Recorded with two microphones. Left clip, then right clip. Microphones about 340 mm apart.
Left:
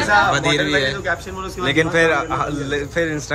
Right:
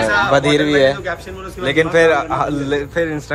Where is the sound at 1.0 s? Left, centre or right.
Left.